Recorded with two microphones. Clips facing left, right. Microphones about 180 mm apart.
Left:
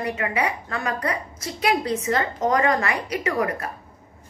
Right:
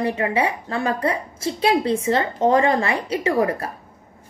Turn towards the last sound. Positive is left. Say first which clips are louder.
# right 4 dB
turn(degrees=-30)  # may be behind; listen again after turning